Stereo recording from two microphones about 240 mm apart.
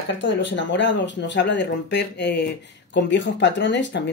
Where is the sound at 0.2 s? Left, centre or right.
Left.